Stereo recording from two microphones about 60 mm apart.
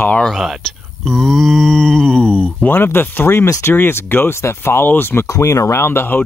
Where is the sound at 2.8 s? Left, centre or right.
Left.